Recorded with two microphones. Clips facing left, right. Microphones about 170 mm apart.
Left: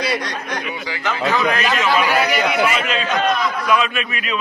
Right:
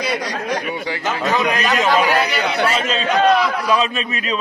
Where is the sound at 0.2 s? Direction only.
10° right (ahead or behind).